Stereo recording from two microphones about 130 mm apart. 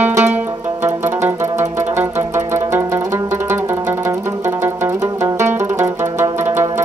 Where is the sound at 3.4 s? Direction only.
20° right (ahead or behind).